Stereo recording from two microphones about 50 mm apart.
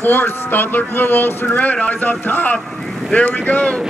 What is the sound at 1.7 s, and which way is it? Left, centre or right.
Speech, left.